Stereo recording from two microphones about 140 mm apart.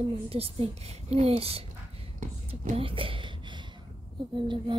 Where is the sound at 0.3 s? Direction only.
45° right (ahead or behind).